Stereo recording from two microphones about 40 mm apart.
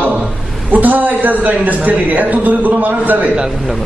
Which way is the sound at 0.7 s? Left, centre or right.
Right.